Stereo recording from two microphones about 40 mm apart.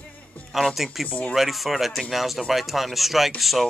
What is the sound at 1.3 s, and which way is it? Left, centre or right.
Speech, centre.